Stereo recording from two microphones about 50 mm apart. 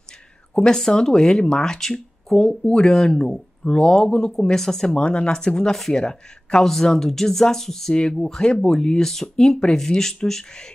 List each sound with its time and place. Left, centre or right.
0.7 s speech: centre
4.9 s speech: centre
5.8 s speech: centre
6.0 s speech: centre